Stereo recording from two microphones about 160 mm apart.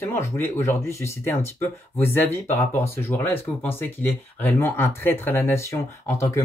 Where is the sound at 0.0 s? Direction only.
15° left (ahead or behind).